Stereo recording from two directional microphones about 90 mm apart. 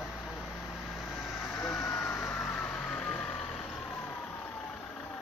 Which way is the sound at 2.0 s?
30° left (ahead or behind).